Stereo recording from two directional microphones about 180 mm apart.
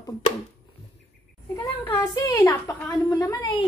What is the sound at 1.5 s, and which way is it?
A woman's voice, 20° left (ahead or behind).